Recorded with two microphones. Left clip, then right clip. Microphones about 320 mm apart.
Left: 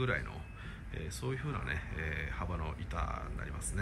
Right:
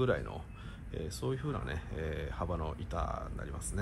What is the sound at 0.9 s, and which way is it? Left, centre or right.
Speech, centre.